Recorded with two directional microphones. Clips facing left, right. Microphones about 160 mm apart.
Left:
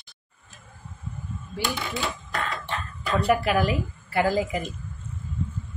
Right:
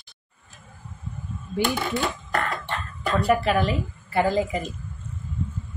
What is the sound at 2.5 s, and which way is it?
Cough, 55° right (ahead or behind).